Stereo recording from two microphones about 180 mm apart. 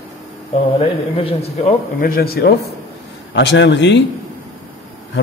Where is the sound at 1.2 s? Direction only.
35° left (ahead or behind).